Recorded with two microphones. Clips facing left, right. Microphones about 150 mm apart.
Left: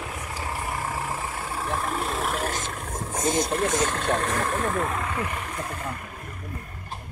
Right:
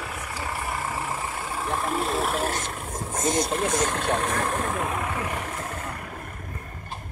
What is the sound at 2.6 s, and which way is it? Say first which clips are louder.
Boat: even; 20° right (ahead or behind).